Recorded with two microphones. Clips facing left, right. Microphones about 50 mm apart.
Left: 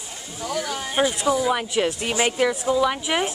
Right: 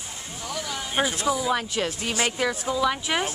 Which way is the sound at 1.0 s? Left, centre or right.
Centre.